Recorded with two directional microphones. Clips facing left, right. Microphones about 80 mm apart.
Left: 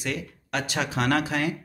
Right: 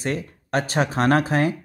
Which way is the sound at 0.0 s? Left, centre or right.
Right.